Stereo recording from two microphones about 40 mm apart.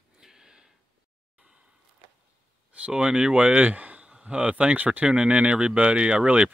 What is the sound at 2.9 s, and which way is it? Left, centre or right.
Speech, right.